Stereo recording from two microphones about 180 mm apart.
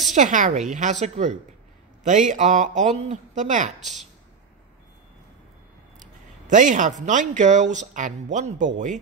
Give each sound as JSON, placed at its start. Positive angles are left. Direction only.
{"t": 0.1, "sound": "a woman's voice", "side_deg": -45}
{"t": 3.8, "sound": "speech", "side_deg": 0}
{"t": 5.9, "sound": "speech", "side_deg": -45}